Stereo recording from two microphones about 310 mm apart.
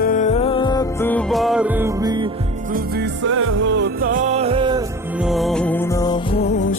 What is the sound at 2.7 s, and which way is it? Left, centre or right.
Music, right.